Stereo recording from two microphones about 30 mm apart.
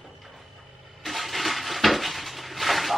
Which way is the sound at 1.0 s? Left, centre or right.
Centre.